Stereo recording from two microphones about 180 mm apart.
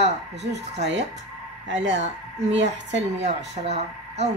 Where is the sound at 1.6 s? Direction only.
85° right.